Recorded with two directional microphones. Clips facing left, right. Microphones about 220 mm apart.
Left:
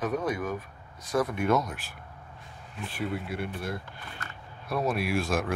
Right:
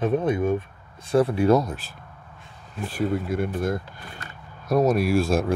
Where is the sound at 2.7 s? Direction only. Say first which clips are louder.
Right 8 dB; 40° right (ahead or behind).